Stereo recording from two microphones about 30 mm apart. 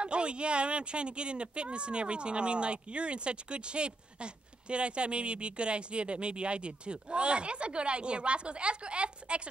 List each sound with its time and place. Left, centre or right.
0.0 s speech: right